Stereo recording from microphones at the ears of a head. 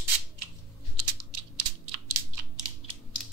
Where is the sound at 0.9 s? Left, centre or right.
Right.